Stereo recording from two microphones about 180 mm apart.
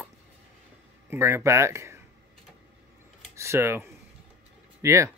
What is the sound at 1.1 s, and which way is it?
Speech, 15° right (ahead or behind).